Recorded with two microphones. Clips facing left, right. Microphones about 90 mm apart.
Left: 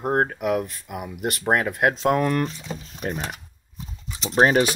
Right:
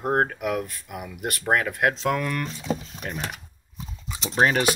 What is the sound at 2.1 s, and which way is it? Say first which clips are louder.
Speech: left 5 dB; 30° left (ahead or behind).